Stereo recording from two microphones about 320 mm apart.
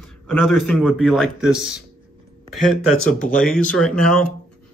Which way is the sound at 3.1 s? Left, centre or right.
Left.